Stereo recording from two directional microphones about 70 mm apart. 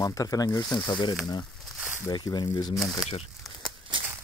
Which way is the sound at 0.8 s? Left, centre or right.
Left.